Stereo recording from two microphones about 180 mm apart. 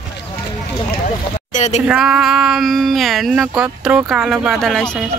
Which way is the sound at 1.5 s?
40° left (ahead or behind).